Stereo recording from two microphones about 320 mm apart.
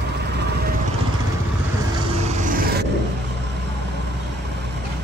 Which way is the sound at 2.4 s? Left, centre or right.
Right.